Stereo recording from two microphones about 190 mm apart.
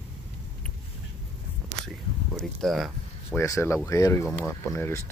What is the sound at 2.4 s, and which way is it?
Speech, centre (ahead or behind).